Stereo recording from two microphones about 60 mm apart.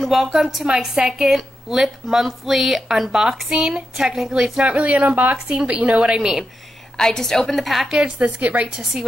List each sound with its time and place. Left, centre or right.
0.0 s a woman's voice: centre
4.3 s a woman's voice: centre
5.0 s a woman's voice: right; by 6.4 s centre
7.0 s a woman's voice: centre
8.0 s a woman's voice: right